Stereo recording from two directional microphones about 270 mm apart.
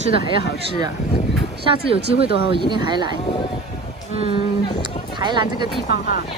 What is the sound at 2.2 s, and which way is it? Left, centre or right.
Speech, right.